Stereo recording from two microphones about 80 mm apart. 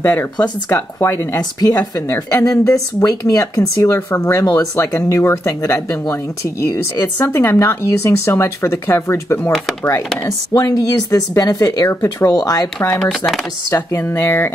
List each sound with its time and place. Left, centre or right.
0.0 s speech: left
7.2 s speech: left
10.5 s speech: left
11.9 s speech: left
12.4 s speech: left
12.9 s speech: centre
13.7 s speech: left